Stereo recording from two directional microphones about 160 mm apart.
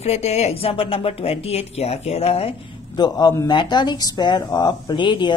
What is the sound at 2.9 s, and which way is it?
Speech, 25° left (ahead or behind).